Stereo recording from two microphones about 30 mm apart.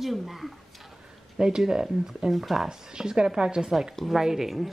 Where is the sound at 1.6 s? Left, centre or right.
Centre.